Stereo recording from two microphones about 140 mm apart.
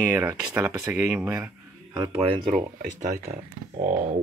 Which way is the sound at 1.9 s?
30° right (ahead or behind).